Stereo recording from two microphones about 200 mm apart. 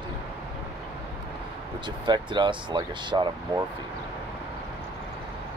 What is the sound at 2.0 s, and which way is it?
Speech, 20° right (ahead or behind).